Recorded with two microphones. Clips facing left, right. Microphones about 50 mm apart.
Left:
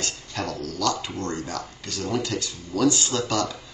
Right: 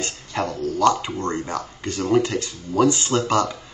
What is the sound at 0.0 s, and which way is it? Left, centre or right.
Speech, right.